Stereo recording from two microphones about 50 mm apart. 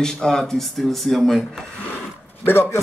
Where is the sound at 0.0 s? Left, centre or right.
Centre.